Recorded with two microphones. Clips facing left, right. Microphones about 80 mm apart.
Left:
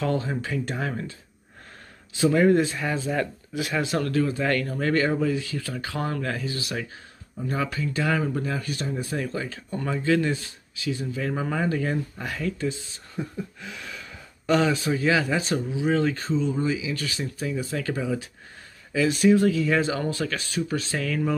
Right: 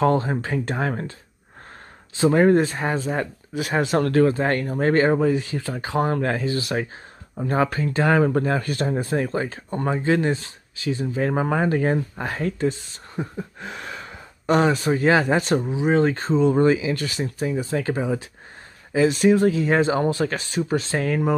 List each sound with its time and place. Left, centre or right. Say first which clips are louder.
0.0 s speech: right 6 dB; right
2.1 s speech: right 3 dB; right
4.5 s speech: right 3 dB; right
8.2 s speech: right 8 dB; right
9.0 s speech: right 6 dB; right
16.4 s speech: right 8 dB; right